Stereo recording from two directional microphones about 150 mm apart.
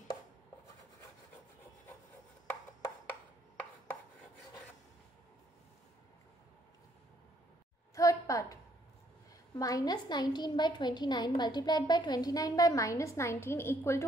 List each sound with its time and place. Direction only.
2.8 s chopping: 10° left (ahead or behind)
7.9 s a sound: 20° left (ahead or behind)
9.6 s a woman's voice: 25° left (ahead or behind)